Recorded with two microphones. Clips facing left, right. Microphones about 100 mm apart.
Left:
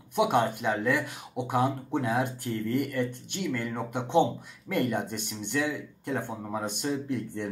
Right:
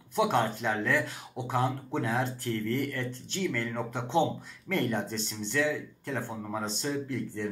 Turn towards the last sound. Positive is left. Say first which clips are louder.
# left 1 dB
turn(degrees=20)  # may be behind; listen again after turning